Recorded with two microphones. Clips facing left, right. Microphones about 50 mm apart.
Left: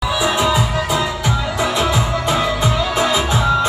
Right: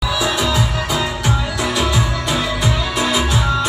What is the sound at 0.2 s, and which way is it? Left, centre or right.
Music, left.